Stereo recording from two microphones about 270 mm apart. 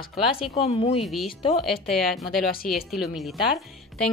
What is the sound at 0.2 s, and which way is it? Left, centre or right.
Speech, centre.